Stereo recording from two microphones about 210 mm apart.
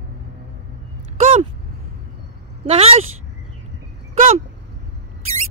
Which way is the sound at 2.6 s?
30° right (ahead or behind).